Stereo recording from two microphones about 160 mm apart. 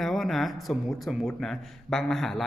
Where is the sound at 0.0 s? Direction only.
Centre (ahead or behind).